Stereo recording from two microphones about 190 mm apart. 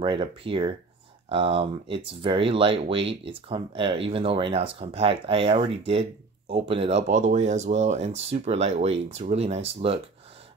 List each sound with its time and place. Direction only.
0.0 s speech: 25° right (ahead or behind)